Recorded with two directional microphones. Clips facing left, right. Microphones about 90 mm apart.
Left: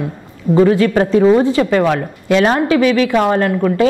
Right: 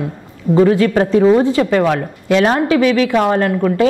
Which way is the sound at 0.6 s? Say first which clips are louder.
Even; 15° left (ahead or behind).